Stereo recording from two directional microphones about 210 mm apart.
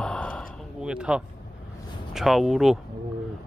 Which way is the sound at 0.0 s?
5° left (ahead or behind).